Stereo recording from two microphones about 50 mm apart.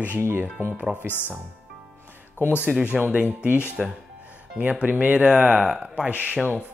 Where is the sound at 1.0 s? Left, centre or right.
Left.